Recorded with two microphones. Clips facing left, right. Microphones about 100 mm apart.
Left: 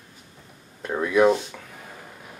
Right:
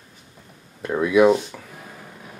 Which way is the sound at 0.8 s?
5° right (ahead or behind).